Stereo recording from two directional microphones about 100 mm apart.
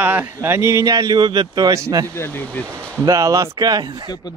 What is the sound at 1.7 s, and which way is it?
Speech, 35° right (ahead or behind).